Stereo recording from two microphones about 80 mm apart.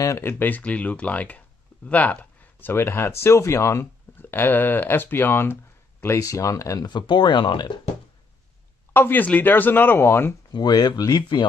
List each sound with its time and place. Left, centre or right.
0.2 s speech: left
6.0 s speech: left
6.9 s speech: left
8.9 s speech: left
10.5 s speech: left